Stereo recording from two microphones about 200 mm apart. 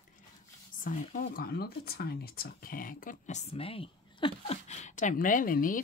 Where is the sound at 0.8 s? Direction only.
40° left (ahead or behind).